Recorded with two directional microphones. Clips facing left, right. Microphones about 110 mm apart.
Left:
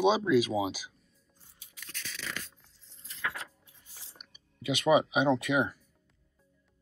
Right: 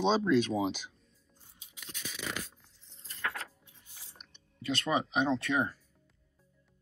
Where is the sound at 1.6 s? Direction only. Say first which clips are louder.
Right 1 dB; 15° right (ahead or behind).